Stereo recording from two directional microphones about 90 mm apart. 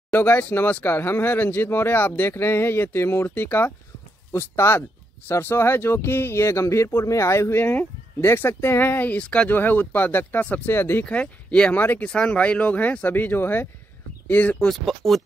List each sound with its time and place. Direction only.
0.1 s speech: 20° left (ahead or behind)
11.1 s speech: 10° left (ahead or behind)
14.7 s speech: centre (ahead or behind)